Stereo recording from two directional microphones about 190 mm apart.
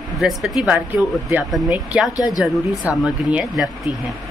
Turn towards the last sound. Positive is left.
turn(degrees=0)  # may be behind; listen again after turning